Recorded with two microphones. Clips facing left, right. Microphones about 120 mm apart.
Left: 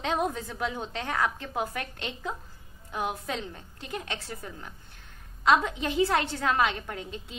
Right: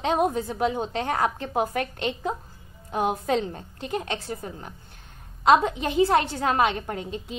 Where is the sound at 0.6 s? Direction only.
20° right (ahead or behind).